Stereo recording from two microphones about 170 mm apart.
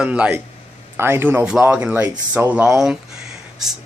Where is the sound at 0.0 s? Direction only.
5° right (ahead or behind).